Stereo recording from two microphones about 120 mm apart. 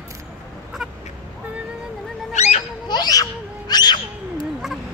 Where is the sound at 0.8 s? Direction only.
5° right (ahead or behind).